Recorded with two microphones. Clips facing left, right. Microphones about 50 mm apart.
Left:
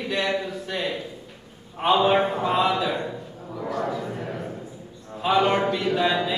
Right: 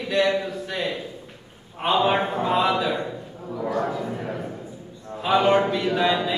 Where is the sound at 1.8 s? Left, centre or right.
Centre.